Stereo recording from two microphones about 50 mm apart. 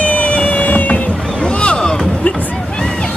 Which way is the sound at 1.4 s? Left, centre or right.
Centre.